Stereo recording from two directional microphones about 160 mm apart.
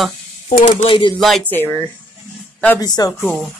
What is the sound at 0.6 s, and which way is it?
Speech, 30° left (ahead or behind).